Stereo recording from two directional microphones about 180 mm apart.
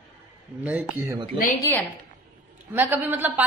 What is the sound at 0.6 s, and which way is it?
Speech, 10° right (ahead or behind).